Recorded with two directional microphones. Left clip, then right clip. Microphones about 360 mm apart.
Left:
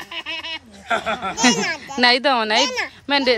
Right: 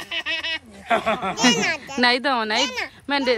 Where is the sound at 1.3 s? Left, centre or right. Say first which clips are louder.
Left 2 dB; centre.